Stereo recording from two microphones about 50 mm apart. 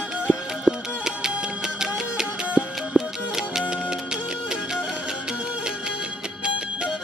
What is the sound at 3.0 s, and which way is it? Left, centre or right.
Music, right.